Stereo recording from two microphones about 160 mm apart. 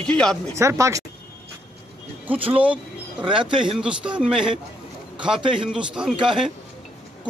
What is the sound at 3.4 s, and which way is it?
Speech, 30° right (ahead or behind).